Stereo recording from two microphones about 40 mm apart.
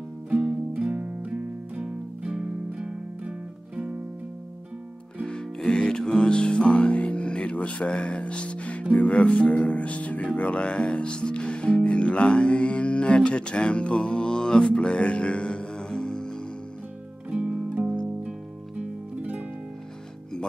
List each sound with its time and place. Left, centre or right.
1.3 s music: right
5.2 s music: centre
9.7 s speech: left
13.9 s music: centre
14.7 s speech: left
16.0 s music: centre
17.4 s music: right